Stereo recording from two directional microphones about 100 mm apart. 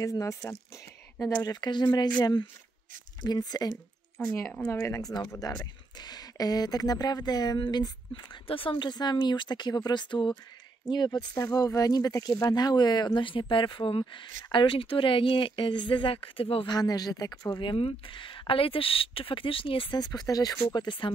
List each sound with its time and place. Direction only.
0.0 s speech: 35° left (ahead or behind)
1.4 s speech: 45° left (ahead or behind)
3.3 s speech: 40° left (ahead or behind)
4.5 s speech: 15° left (ahead or behind)
4.8 s speech: 30° left (ahead or behind)
5.5 s speech: 40° left (ahead or behind)
8.2 s speech: 55° left (ahead or behind)
16.7 s speech: 40° left (ahead or behind)
17.7 s a woman's voice: 65° left (ahead or behind)
19.9 s speech: 40° left (ahead or behind)